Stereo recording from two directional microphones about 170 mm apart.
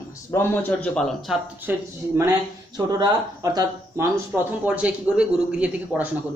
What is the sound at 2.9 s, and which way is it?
Speech, 20° right (ahead or behind).